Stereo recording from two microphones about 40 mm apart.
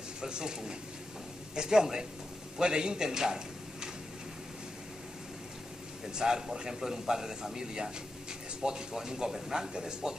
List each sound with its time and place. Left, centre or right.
0.2 s a man's voice: centre
6.1 s a man's voice: centre